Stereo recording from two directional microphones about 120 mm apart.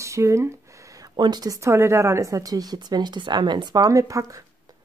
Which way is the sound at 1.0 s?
35° right (ahead or behind).